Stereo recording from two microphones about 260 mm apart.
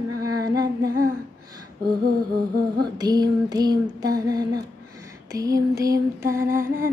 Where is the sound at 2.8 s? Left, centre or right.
Centre.